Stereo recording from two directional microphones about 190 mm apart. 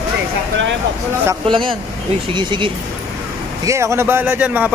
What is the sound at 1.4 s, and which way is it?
Speech, 25° right (ahead or behind).